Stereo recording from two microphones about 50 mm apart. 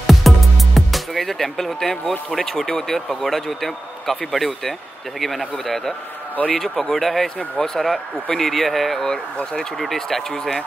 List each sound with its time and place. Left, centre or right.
0.0 s music: centre
0.7 s speech: centre
9.1 s speech: centre